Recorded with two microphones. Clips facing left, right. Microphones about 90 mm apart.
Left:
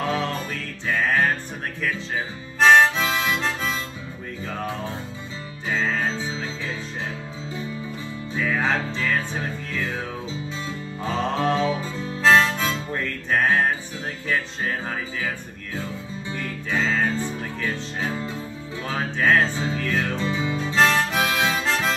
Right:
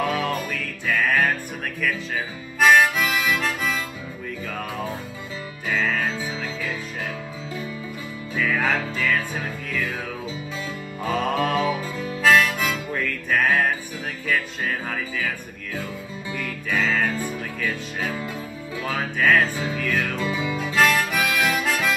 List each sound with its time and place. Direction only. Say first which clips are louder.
0.0 s music: right 1 dB; 30° left (ahead or behind)
1.8 s harmonica: right 1 dB; 25° left (ahead or behind)
4.5 s music: left 1 dB; 25° left (ahead or behind)
8.4 s music: even; 25° left (ahead or behind)
11.1 s harmonica: even; 25° left (ahead or behind)
14.2 s music: right 1 dB; 25° left (ahead or behind)